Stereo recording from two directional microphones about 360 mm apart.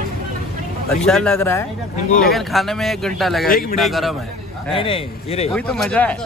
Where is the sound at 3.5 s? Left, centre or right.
Left.